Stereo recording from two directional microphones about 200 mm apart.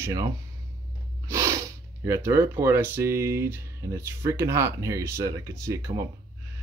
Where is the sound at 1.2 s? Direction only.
15° right (ahead or behind).